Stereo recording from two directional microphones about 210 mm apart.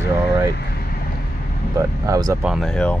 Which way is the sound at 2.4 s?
5° left (ahead or behind).